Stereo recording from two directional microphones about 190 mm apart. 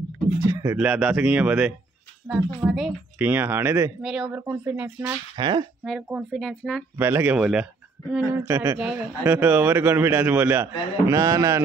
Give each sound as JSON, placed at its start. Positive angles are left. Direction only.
{"t": 0.4, "sound": "speech", "side_deg": -15}
{"t": 5.4, "sound": "speech", "side_deg": -25}
{"t": 5.9, "sound": "speech", "side_deg": 0}
{"t": 7.0, "sound": "speech", "side_deg": -10}